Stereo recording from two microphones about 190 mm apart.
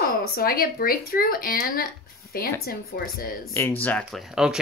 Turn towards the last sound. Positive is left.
turn(degrees=0)  # may be behind; listen again after turning